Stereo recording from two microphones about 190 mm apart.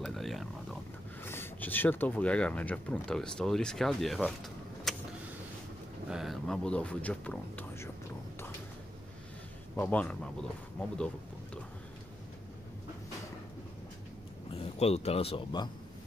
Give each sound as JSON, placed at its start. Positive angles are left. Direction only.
{"t": 0.0, "sound": "a sound", "side_deg": 0}
{"t": 1.2, "sound": "speech", "side_deg": 10}
{"t": 4.9, "sound": "vehicle", "side_deg": 0}
{"t": 6.0, "sound": "speech", "side_deg": 0}
{"t": 9.8, "sound": "speech", "side_deg": 10}
{"t": 14.5, "sound": "speech", "side_deg": 30}